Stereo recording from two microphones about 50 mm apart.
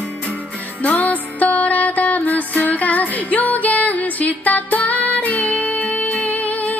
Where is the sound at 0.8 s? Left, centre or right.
Left.